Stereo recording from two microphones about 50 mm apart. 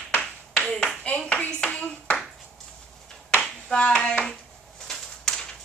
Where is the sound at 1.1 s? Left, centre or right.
Left.